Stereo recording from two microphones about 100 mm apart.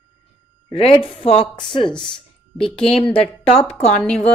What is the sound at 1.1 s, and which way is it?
Speech, 80° left.